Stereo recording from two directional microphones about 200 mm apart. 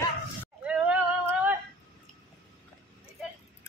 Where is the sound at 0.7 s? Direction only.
5° right (ahead or behind).